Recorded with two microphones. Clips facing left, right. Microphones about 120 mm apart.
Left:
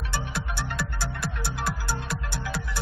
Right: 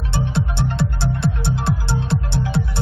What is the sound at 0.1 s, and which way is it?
Music, 25° right (ahead or behind).